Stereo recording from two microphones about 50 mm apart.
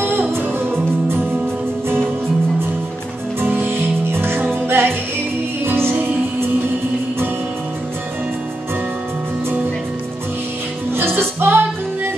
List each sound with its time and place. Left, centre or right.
0.3 s music: right
3.4 s music: right
11.0 s music: right